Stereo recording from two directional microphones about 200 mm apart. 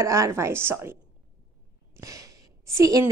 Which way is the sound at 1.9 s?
15° right (ahead or behind).